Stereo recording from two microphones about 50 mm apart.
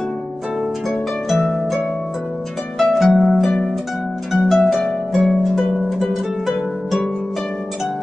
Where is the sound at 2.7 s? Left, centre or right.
Centre.